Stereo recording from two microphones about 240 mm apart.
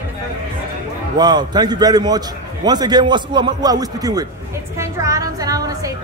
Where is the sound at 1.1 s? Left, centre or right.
Centre.